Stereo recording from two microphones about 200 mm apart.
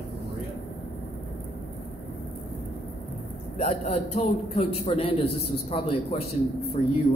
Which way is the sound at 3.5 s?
35° left (ahead or behind).